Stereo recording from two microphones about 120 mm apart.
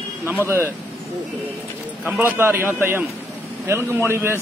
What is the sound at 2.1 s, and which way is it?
A man's voice, 15° right (ahead or behind).